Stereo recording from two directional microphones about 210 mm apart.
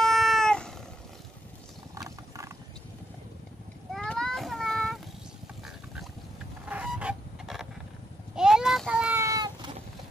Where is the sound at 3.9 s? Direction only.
5° left (ahead or behind).